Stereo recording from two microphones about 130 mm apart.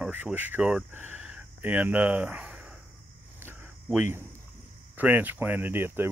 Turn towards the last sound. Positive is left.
turn(degrees=-15)  # may be behind; listen again after turning